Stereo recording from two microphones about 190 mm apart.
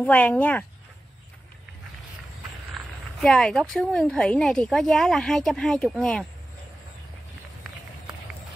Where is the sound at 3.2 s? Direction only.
5° left (ahead or behind).